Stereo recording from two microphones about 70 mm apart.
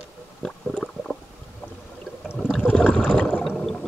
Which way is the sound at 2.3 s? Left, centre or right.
Centre.